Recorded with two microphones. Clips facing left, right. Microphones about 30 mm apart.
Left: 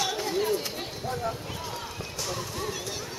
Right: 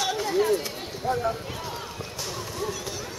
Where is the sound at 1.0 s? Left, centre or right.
Centre.